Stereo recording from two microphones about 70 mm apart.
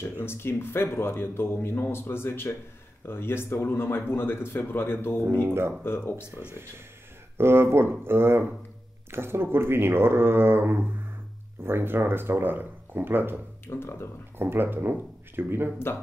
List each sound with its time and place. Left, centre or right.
0.0 s speech: left
5.5 s speech: right
5.9 s speech: left
7.3 s speech: right
13.7 s speech: left
14.4 s speech: right